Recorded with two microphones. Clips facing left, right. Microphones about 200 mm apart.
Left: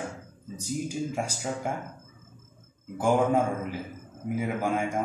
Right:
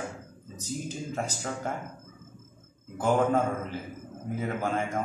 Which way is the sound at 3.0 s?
10° left (ahead or behind).